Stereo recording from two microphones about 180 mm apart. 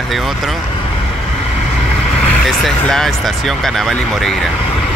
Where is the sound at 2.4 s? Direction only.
Centre (ahead or behind).